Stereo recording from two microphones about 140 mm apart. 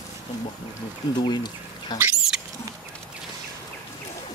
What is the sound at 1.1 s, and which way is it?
Speech, 30° left (ahead or behind).